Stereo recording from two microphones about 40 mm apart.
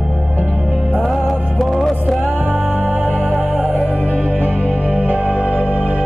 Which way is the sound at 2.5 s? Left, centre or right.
Right.